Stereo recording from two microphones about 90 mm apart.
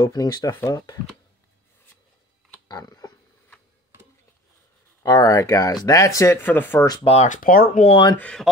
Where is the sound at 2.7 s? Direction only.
45° left (ahead or behind).